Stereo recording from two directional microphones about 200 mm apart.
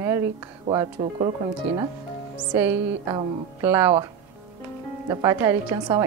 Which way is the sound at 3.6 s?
10° right (ahead or behind).